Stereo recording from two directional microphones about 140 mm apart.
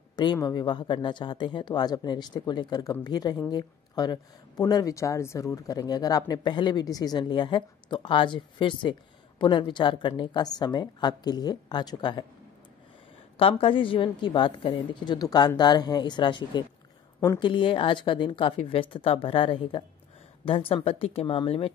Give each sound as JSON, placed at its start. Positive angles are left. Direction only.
{"t": 0.1, "sound": "speech", "side_deg": 30}
{"t": 13.4, "sound": "speech", "side_deg": 40}